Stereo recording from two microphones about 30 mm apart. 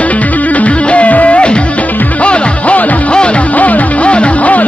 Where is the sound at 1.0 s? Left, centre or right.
Left.